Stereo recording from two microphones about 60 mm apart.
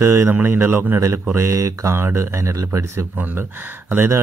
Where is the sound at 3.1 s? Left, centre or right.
Right.